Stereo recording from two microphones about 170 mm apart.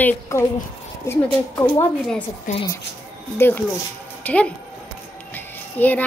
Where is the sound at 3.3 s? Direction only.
10° left (ahead or behind).